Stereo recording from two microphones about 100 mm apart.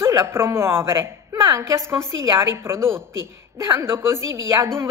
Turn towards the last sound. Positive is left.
turn(degrees=-30)  # may be behind; listen again after turning